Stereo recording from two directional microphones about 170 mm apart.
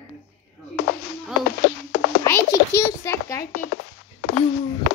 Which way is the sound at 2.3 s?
20° left (ahead or behind).